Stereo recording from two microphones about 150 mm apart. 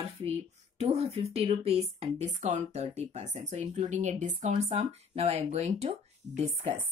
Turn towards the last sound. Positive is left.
turn(degrees=-45)  # may be behind; listen again after turning